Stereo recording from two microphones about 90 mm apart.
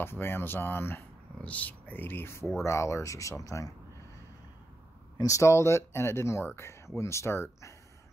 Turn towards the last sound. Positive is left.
turn(degrees=30)  # may be behind; listen again after turning